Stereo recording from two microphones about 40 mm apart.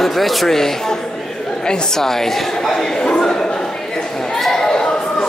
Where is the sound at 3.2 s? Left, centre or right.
Centre.